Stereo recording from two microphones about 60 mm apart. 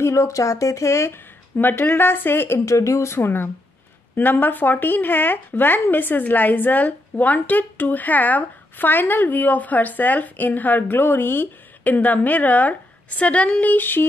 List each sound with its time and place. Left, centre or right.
0.0 s speech: left
1.6 s a woman's voice: left
2.6 s speech: left
3.2 s a woman's voice: left